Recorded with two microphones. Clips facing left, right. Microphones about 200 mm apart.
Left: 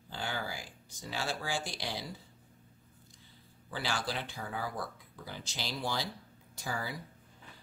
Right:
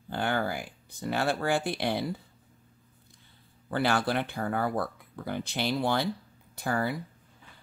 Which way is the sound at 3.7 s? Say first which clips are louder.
Right 10 dB; 60° right (ahead or behind).